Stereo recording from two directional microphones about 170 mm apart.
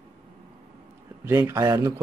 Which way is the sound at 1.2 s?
15° right (ahead or behind).